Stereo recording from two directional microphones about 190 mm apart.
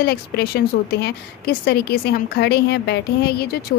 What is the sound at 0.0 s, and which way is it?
A woman's voice, 55° left (ahead or behind).